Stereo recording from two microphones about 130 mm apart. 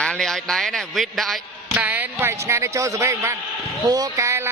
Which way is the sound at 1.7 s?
15° right (ahead or behind).